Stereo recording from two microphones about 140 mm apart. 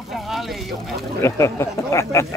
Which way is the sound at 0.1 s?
Centre (ahead or behind).